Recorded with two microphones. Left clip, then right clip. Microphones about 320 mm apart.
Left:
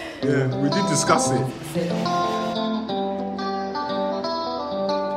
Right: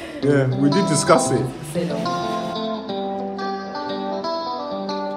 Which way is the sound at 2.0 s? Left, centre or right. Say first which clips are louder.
Left 1 dB; centre.